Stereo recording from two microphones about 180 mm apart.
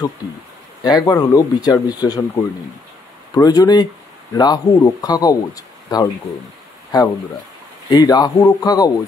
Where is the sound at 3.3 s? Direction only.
20° left (ahead or behind).